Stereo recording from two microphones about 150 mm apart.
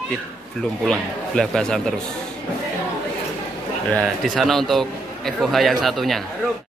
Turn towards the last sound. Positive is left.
turn(degrees=0)  # may be behind; listen again after turning